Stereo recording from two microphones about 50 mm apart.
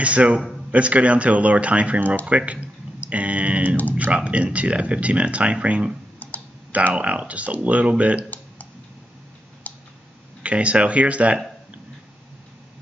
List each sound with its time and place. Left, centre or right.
0.0 s speech: right
6.9 s speech: right
10.4 s speech: right